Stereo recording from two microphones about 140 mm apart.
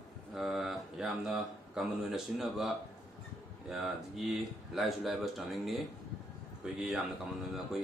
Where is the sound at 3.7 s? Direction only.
Centre (ahead or behind).